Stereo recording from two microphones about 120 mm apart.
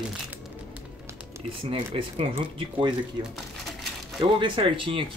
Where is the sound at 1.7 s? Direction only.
50° right (ahead or behind).